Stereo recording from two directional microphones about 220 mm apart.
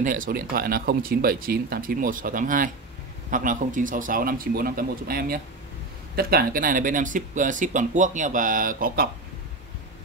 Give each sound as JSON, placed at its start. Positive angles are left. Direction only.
{"t": 0.0, "sound": "speech", "side_deg": -40}